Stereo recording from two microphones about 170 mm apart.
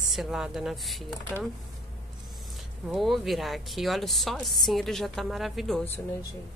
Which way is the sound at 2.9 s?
Centre (ahead or behind).